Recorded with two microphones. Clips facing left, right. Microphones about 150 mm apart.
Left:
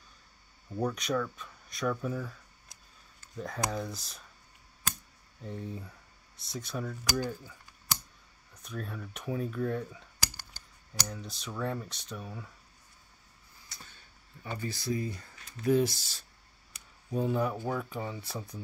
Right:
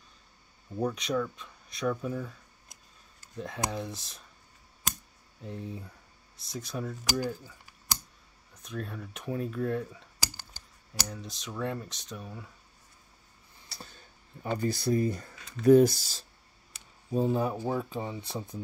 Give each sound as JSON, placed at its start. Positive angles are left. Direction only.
{"t": 0.7, "sound": "speech", "side_deg": 0}
{"t": 3.3, "sound": "speech", "side_deg": -5}
{"t": 5.4, "sound": "speech", "side_deg": 0}
{"t": 6.9, "sound": "speech", "side_deg": -10}
{"t": 8.6, "sound": "speech", "side_deg": 0}
{"t": 13.7, "sound": "a sound", "side_deg": -35}
{"t": 15.6, "sound": "speech", "side_deg": -45}
{"t": 16.7, "sound": "speech", "side_deg": -30}